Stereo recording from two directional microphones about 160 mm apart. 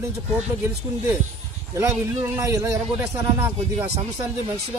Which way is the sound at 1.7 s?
20° right (ahead or behind).